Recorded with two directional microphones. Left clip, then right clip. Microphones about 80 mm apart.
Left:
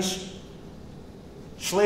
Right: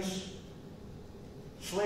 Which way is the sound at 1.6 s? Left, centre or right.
Left.